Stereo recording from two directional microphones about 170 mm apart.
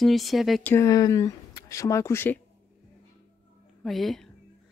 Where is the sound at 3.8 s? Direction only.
Centre (ahead or behind).